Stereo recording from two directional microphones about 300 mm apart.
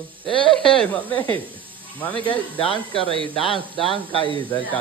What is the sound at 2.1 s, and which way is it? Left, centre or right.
Speech, centre.